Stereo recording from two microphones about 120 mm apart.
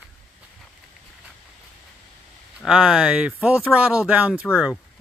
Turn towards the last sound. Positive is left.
turn(degrees=-10)  # may be behind; listen again after turning